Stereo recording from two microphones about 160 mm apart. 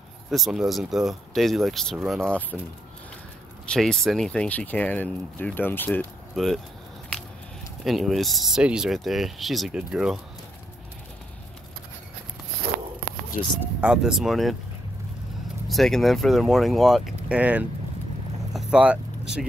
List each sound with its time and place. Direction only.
0.3 s speech: centre (ahead or behind)
3.6 s speech: 5° left (ahead or behind)
6.3 s speech: centre (ahead or behind)
7.8 s speech: centre (ahead or behind)
13.6 s speech: 5° right (ahead or behind)
15.7 s speech: centre (ahead or behind)
18.5 s vehicle: 5° right (ahead or behind)